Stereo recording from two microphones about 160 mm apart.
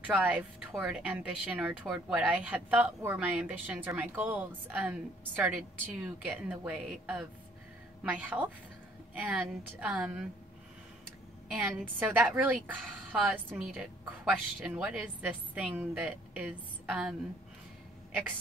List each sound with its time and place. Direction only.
0.0 s speech: 10° right (ahead or behind)
11.5 s speech: 10° right (ahead or behind)